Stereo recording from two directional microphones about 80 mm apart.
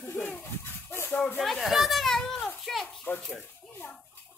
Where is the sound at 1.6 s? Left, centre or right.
Centre.